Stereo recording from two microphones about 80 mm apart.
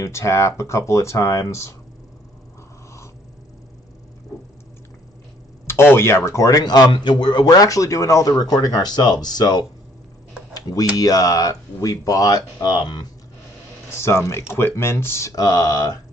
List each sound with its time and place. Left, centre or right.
0.0 s speech: left
5.7 s speech: left
6.6 s a man's voice: left
10.5 s a sound: left
11.0 s speech: left
13.9 s speech: left
15.2 s speech: left